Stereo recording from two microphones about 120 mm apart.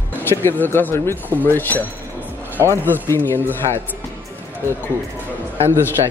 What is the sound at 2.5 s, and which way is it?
Speech, 25° right (ahead or behind).